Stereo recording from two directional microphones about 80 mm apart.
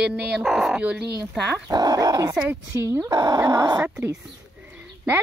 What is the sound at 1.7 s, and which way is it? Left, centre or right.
Speech, right.